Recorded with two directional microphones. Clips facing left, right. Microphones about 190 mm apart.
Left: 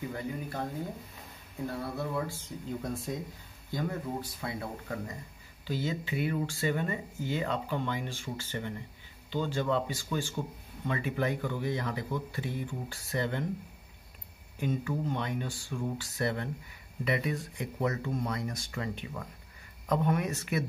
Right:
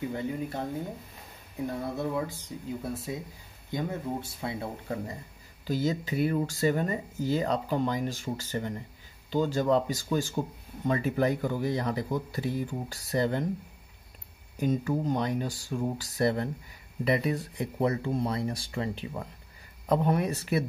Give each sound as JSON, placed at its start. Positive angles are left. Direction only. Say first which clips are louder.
{"t": 0.1, "sound": "speech", "louder": "right 4 dB", "side_deg": -25}
{"t": 1.7, "sound": "speech", "louder": "right 3 dB", "side_deg": -20}
{"t": 2.8, "sound": "speech", "louder": "even", "side_deg": -5}
{"t": 3.7, "sound": "speech", "louder": "right 2 dB", "side_deg": -25}
{"t": 5.7, "sound": "speech", "louder": "right 5 dB", "side_deg": -40}
{"t": 14.6, "sound": "speech", "louder": "right 5 dB", "side_deg": -40}